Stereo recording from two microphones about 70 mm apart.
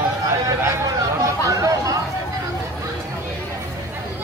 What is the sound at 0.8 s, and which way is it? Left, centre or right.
Chatter, right.